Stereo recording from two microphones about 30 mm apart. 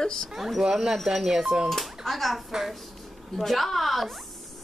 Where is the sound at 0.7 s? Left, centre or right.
Centre.